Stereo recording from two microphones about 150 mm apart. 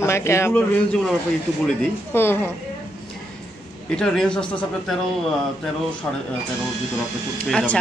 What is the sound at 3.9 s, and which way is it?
Speech, 5° left (ahead or behind).